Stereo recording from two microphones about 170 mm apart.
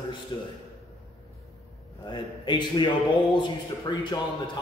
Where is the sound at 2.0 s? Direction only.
30° left (ahead or behind).